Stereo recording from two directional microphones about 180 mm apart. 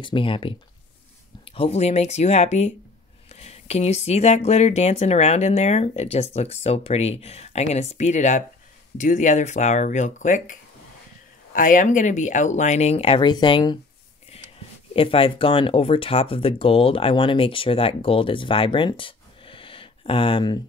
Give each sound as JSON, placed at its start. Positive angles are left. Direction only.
{"t": 0.0, "sound": "speech", "side_deg": 30}
{"t": 15.0, "sound": "speech", "side_deg": 30}